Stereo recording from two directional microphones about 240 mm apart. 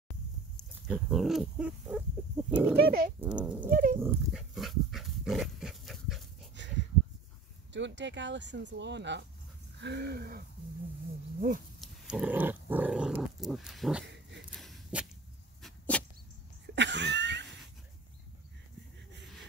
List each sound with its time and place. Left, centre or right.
0.6 s speech: centre
2.8 s speech: right
3.2 s speech: centre
3.6 s speech: right
4.0 s dog: centre
6.6 s a sound: right
7.7 s speech: right
11.8 s dog: centre
14.0 s dog: right
14.5 s walk: centre
15.6 s dog: centre
16.7 s a sound: right